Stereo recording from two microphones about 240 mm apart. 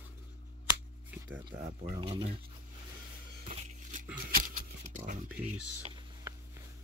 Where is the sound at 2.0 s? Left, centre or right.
Right.